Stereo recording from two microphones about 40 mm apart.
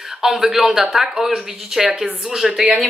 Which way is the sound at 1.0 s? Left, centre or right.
Centre.